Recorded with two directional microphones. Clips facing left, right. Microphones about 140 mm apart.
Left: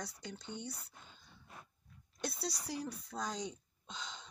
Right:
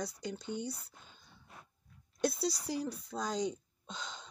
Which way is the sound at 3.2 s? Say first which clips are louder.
Right 6 dB; 35° right (ahead or behind).